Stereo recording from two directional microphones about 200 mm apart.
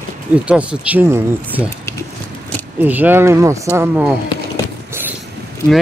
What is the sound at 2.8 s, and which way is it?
Speech, 10° right (ahead or behind).